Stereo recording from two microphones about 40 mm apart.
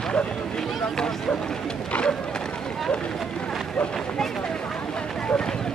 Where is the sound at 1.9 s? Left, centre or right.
Left.